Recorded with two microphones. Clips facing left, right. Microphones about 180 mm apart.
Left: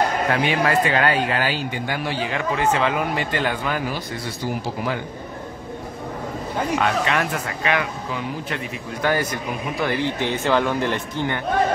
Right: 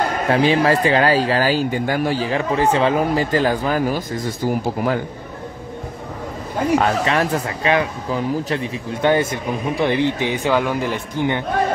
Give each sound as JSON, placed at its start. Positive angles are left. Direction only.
{"t": 0.3, "sound": "speech", "side_deg": -30}
{"t": 6.8, "sound": "a man's voice", "side_deg": -35}